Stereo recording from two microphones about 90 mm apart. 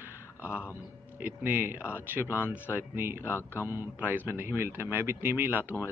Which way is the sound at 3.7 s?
25° right (ahead or behind).